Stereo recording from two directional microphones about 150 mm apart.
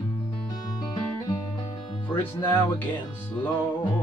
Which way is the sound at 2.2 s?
15° left (ahead or behind).